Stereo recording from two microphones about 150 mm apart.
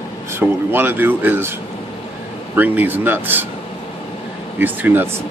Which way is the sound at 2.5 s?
10° right (ahead or behind).